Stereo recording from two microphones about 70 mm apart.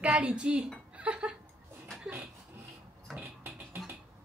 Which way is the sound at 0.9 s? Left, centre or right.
Centre.